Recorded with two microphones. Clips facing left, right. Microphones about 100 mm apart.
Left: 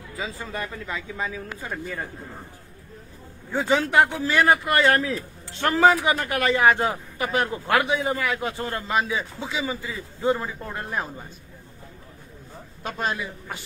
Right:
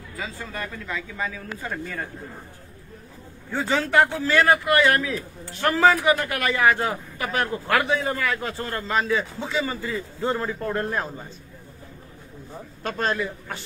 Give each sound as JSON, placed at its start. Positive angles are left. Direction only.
{"t": 0.5, "sound": "a man's voice", "side_deg": 20}
{"t": 3.5, "sound": "a man's voice", "side_deg": 15}
{"t": 12.8, "sound": "a man's voice", "side_deg": 10}